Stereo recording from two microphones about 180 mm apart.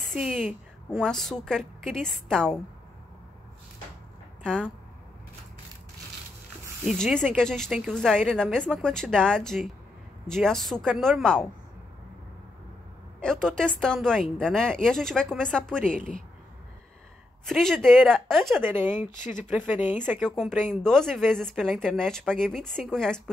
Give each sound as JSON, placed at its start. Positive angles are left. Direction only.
{"t": 0.9, "sound": "a woman's voice", "side_deg": 0}
{"t": 4.4, "sound": "speech", "side_deg": 5}
{"t": 7.0, "sound": "a woman's voice", "side_deg": 5}
{"t": 13.2, "sound": "a woman's voice", "side_deg": 5}
{"t": 17.5, "sound": "a woman's voice", "side_deg": 0}
{"t": 18.6, "sound": "speech", "side_deg": -10}
{"t": 18.9, "sound": "speech", "side_deg": 45}
{"t": 19.4, "sound": "speech", "side_deg": -10}
{"t": 20.2, "sound": "a woman's voice", "side_deg": 5}